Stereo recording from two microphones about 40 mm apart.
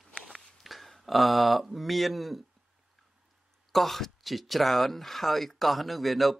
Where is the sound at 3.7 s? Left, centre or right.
Centre.